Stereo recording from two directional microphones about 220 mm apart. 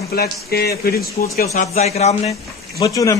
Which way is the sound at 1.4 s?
30° left (ahead or behind).